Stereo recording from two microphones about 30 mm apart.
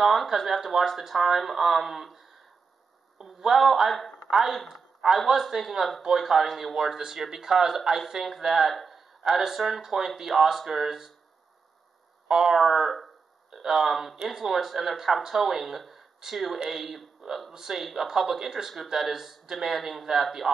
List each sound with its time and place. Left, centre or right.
0.0 s speech: centre
3.3 s a woman's voice: centre
10.3 s speech: centre
12.3 s speech: centre